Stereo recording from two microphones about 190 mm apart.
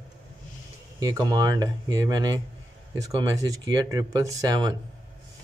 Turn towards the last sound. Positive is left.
turn(degrees=-20)  # may be behind; listen again after turning